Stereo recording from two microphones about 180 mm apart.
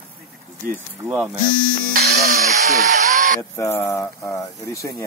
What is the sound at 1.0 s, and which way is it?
Speech, 5° right (ahead or behind).